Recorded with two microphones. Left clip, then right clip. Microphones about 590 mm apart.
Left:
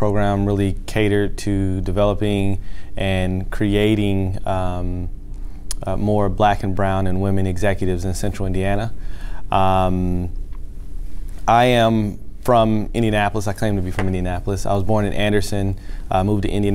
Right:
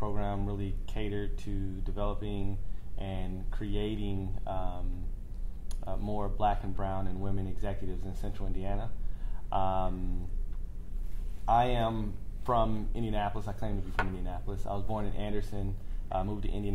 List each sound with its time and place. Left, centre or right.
0.0 s speech: left
11.4 s speech: left